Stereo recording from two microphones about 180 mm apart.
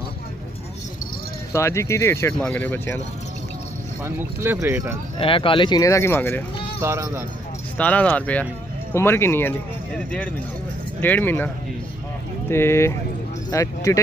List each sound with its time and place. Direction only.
1.5 s speech: 15° left (ahead or behind)
4.0 s speech: 10° right (ahead or behind)
5.2 s speech: 30° left (ahead or behind); by 6.4 s 10° left (ahead or behind)
6.8 s speech: 15° right (ahead or behind)
7.7 s speech: 10° left (ahead or behind)